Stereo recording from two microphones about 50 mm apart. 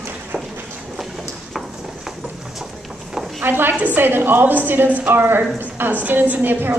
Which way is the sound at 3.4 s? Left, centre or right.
Right.